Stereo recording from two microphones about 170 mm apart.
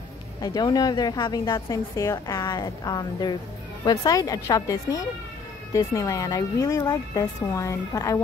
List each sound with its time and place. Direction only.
0.4 s a woman's voice: 20° left (ahead or behind)